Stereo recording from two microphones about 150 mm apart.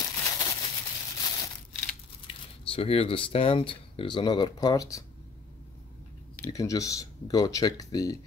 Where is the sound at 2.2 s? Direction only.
40° left (ahead or behind); by 5.0 s 25° left (ahead or behind).